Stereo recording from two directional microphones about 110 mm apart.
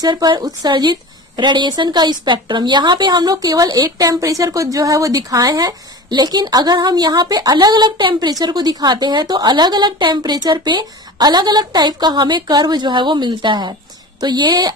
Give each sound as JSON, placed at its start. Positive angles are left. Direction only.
{"t": 0.0, "sound": "a woman's voice", "side_deg": -40}